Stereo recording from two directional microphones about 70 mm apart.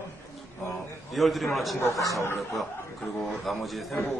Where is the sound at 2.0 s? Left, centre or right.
Left.